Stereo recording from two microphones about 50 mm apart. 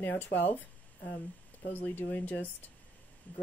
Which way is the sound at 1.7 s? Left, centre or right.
Left.